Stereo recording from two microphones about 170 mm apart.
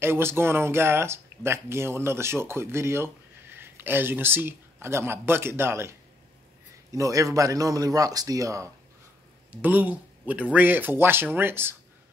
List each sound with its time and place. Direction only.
0.0 s a man's voice: 15° right (ahead or behind)